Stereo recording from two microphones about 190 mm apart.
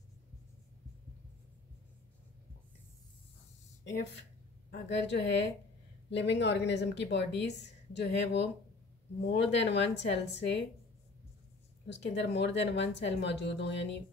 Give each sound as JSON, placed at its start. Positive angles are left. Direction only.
{"t": 4.6, "sound": "speech", "side_deg": 65}
{"t": 11.9, "sound": "speech", "side_deg": 65}